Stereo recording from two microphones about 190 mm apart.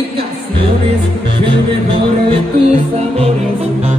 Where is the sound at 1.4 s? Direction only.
30° right (ahead or behind).